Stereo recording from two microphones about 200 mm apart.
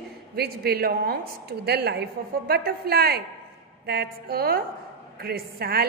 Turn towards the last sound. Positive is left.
turn(degrees=-50)  # may be behind; listen again after turning